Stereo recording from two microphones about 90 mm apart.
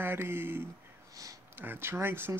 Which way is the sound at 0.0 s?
25° right (ahead or behind).